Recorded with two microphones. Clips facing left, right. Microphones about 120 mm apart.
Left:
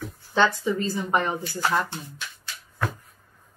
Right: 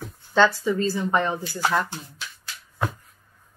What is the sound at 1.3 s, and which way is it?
Speech, 20° right (ahead or behind).